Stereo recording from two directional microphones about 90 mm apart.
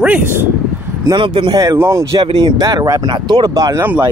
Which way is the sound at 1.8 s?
30° right (ahead or behind).